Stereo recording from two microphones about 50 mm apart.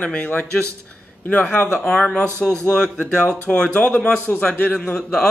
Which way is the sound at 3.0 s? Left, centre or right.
Left.